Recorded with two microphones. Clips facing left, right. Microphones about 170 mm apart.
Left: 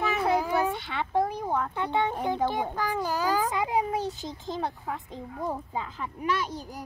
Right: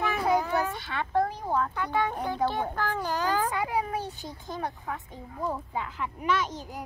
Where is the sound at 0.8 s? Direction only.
20° left (ahead or behind).